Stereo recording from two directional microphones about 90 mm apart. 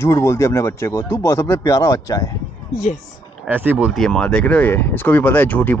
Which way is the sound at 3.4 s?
20° right (ahead or behind).